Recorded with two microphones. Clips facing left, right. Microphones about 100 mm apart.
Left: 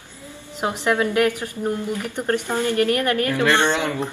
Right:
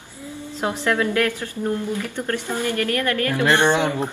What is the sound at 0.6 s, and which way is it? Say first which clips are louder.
A woman's voice: left 1 dB; 15° left (ahead or behind).